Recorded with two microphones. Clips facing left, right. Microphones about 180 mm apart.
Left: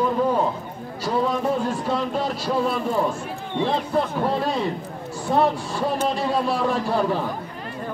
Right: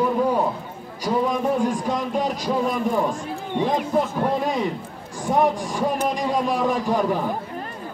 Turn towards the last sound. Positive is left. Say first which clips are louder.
# right 1 dB
turn(degrees=-15)  # may be behind; listen again after turning